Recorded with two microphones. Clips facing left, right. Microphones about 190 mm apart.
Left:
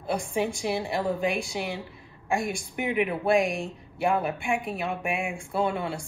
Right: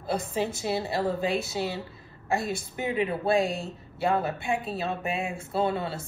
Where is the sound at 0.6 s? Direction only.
15° left (ahead or behind).